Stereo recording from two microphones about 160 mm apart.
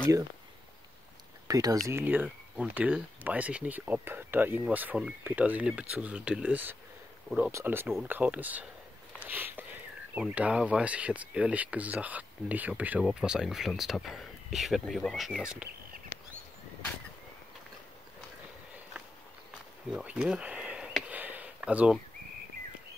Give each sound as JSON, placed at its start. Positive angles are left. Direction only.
{"t": 1.5, "sound": "speech", "side_deg": -25}
{"t": 1.9, "sound": "speech", "side_deg": -15}
{"t": 19.9, "sound": "a sound", "side_deg": -5}